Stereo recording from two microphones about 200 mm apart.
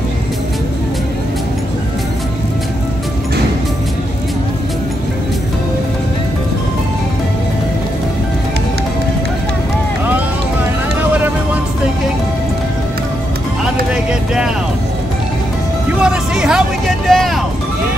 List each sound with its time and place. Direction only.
16.0 s music: 5° right (ahead or behind)
17.1 s vehicle: centre (ahead or behind)